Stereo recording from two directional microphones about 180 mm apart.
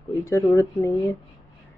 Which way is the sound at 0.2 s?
15° left (ahead or behind).